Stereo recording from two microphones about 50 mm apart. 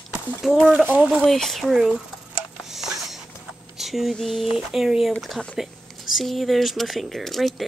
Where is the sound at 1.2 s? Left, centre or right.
Centre.